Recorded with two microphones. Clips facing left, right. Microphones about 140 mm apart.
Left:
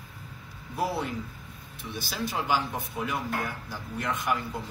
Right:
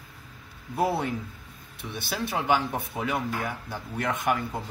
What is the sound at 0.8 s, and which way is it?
Speech, 60° right (ahead or behind).